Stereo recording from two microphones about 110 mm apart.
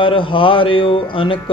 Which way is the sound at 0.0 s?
50° left (ahead or behind).